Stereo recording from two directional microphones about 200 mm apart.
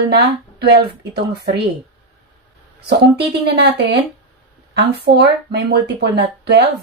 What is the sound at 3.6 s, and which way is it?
Speech, 55° right (ahead or behind).